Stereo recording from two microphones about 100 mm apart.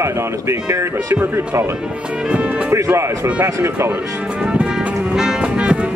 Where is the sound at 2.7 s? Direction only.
30° right (ahead or behind).